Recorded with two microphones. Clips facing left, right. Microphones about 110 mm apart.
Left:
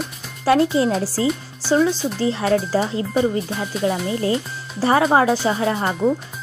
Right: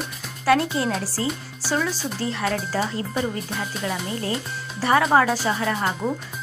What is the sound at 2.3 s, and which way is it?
Speech, 30° left (ahead or behind).